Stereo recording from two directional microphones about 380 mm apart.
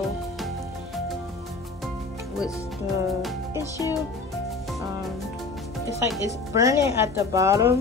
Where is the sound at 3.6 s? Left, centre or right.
Centre.